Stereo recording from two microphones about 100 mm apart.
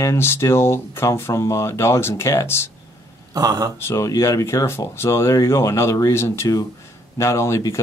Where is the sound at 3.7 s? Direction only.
30° left (ahead or behind).